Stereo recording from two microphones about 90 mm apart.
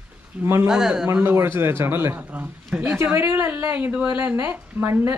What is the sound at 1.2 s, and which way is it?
A man's voice, 25° right (ahead or behind).